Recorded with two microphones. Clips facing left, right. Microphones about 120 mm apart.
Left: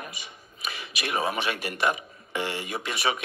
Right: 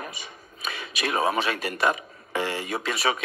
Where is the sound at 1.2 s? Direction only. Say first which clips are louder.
Right 4 dB; 30° right (ahead or behind).